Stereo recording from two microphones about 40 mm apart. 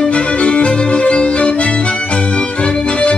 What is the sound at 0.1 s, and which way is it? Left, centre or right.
Music, left.